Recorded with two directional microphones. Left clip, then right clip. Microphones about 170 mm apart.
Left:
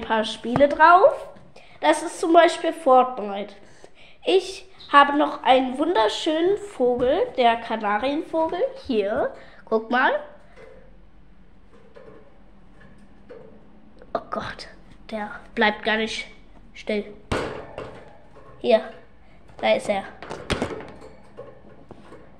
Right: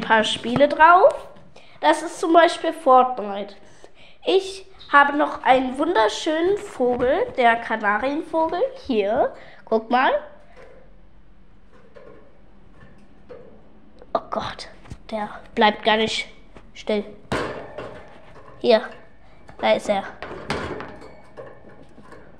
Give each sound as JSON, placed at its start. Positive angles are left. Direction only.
{"t": 0.0, "sound": "a woman's voice", "side_deg": -5}
{"t": 13.9, "sound": "a woman's voice", "side_deg": 0}
{"t": 18.6, "sound": "a woman's voice", "side_deg": -25}
{"t": 19.6, "sound": "speech", "side_deg": -10}